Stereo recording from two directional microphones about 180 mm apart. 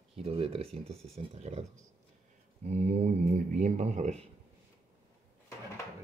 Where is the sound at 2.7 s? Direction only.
40° right (ahead or behind).